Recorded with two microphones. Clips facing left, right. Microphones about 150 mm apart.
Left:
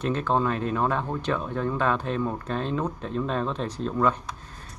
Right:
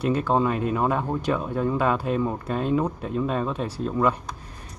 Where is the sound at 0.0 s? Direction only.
10° right (ahead or behind).